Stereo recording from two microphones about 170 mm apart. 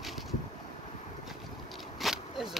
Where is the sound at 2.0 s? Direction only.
Centre (ahead or behind).